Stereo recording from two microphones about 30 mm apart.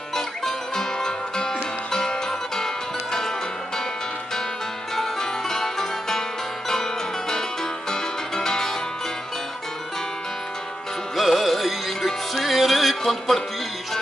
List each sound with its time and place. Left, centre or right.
0.1 s music: centre
4.9 s music: centre
11.1 s music: centre